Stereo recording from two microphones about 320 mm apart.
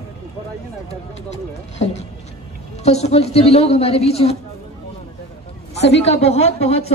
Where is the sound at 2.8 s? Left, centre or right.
Centre.